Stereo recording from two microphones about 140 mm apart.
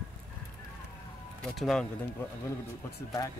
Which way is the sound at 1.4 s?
5° left (ahead or behind).